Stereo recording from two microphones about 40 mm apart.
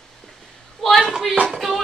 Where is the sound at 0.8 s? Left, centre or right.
Centre.